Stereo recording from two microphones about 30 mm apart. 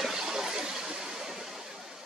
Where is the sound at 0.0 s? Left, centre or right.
Centre.